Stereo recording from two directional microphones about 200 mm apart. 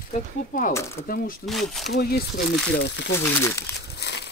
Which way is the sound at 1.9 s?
55° left (ahead or behind).